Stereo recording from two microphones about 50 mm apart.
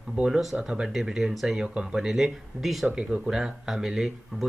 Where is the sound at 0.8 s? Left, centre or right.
Centre.